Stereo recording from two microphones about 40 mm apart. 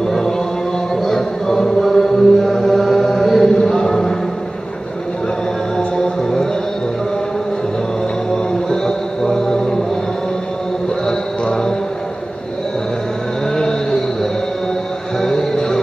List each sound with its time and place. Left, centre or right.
0.0 s chant: centre
1.0 s mantra: centre
3.5 s chant: centre
5.8 s music: centre
8.6 s music: centre
11.4 s music: centre
15.1 s music: centre